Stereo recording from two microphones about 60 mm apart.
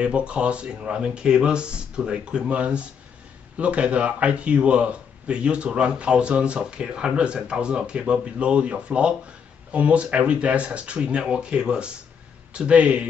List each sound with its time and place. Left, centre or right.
0.0 s a man's voice: centre